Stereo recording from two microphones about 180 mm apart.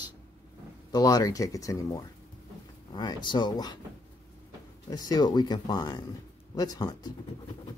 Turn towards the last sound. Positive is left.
turn(degrees=20)  # may be behind; listen again after turning